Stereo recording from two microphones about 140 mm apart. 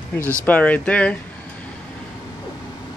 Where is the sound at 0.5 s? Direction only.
10° left (ahead or behind).